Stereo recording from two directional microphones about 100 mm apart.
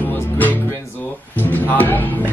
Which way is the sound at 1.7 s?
20° left (ahead or behind).